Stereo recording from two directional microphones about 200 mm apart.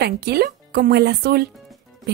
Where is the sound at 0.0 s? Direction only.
50° right (ahead or behind).